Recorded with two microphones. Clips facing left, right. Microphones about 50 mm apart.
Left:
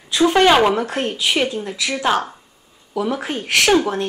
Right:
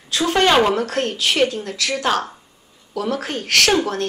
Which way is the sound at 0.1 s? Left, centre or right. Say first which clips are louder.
Left 3 dB; centre.